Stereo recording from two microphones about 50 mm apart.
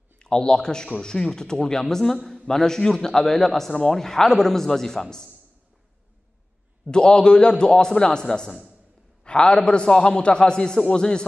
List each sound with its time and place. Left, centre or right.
0.2 s a man's voice: centre
6.9 s a man's voice: centre